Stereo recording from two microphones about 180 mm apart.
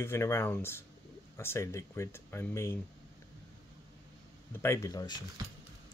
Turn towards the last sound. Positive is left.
turn(degrees=20)  # may be behind; listen again after turning